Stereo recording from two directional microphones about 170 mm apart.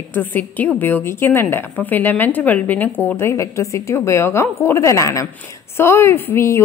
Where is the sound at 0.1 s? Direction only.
10° left (ahead or behind).